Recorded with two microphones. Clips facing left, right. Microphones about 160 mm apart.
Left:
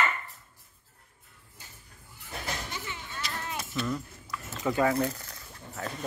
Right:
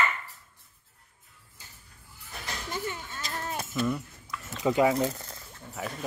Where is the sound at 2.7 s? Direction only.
45° right (ahead or behind).